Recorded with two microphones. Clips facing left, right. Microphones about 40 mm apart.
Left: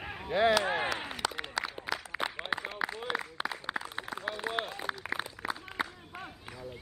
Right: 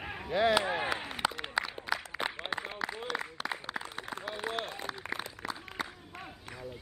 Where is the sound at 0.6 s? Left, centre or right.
Centre.